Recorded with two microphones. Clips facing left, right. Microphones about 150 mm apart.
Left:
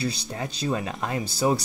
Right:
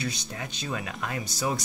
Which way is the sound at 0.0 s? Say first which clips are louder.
Left 5 dB; 30° left (ahead or behind).